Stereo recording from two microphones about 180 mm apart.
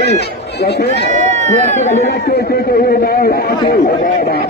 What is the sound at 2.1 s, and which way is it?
A man's voice, 60° left (ahead or behind).